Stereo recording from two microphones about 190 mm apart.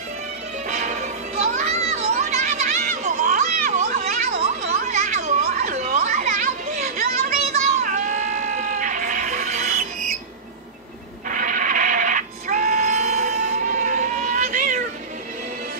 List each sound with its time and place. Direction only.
0.7 s music: 40° right (ahead or behind)
4.7 s children playing: 40° right (ahead or behind)
7.7 s music: 40° right (ahead or behind)
11.2 s music: 45° right (ahead or behind)